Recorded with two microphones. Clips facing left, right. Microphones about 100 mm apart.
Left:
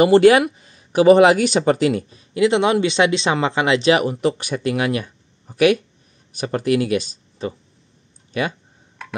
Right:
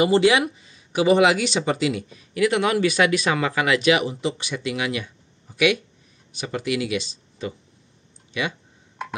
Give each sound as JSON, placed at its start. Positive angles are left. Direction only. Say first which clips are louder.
{"t": 0.0, "sound": "speech", "louder": "left 6 dB", "side_deg": 50}
{"t": 4.0, "sound": "speech", "louder": "left 6 dB", "side_deg": 50}